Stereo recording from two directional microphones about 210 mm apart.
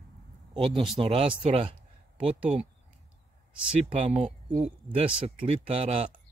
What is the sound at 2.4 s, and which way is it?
Speech, 5° right (ahead or behind).